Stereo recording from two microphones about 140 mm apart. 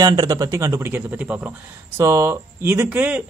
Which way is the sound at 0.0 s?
30° right (ahead or behind).